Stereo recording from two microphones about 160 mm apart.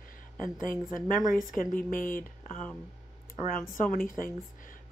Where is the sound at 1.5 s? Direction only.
60° left (ahead or behind).